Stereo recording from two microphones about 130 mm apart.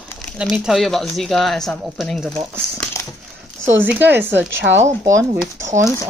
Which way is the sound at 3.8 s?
15° right (ahead or behind).